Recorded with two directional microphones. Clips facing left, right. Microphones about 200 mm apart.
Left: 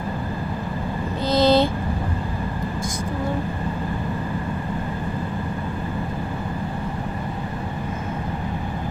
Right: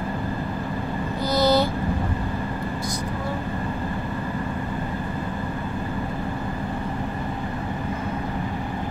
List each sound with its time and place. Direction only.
1.3 s vehicle: 20° left (ahead or behind)